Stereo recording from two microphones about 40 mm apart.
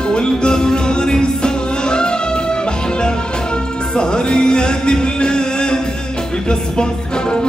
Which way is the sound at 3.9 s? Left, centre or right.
Left.